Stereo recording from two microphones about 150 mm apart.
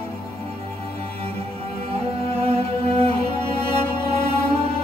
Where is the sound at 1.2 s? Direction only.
40° right (ahead or behind).